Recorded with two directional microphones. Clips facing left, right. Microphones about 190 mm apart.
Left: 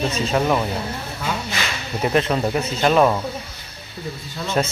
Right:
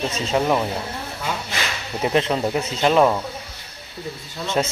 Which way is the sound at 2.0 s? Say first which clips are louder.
Left 1 dB; 20° right (ahead or behind).